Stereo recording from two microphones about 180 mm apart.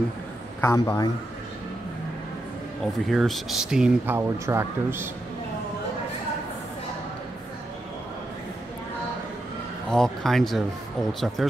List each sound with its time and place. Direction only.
0.6 s a man's voice: 20° left (ahead or behind)
2.8 s speech: centre (ahead or behind)
9.8 s speech: centre (ahead or behind)